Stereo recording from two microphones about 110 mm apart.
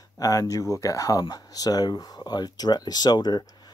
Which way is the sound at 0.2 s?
30° left (ahead or behind).